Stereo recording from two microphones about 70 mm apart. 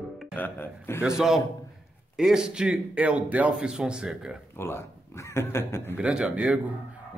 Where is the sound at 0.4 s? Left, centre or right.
Left.